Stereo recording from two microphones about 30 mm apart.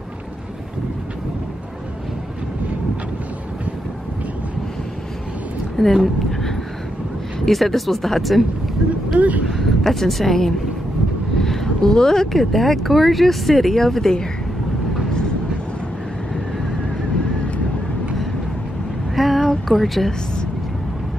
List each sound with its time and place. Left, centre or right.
5.8 s speech: centre
7.4 s speech: centre
9.1 s speech: right
9.5 s a woman's voice: centre
19.1 s a sound: centre
19.7 s speech: centre